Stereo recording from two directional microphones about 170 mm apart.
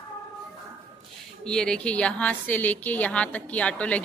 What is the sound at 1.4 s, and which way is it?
A woman's voice, 5° left (ahead or behind).